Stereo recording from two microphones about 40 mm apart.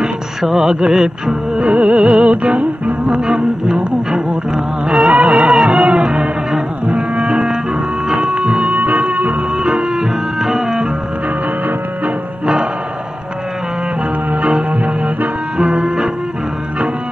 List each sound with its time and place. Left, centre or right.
0.4 s music: centre; by 2.5 s right
3.1 s music: right
4.8 s music: right
8.7 s music: right
9.6 s music: centre
14.3 s music: right
15.5 s music: right